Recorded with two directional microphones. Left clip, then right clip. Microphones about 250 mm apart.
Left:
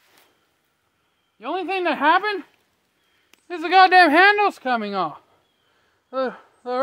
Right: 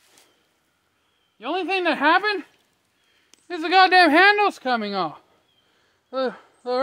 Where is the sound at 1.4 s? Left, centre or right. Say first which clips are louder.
Right 1 dB; centre.